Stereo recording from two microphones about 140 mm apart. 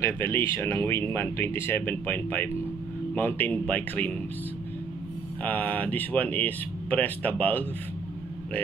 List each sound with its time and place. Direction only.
0.0 s speech: 20° left (ahead or behind)
5.4 s speech: 10° left (ahead or behind)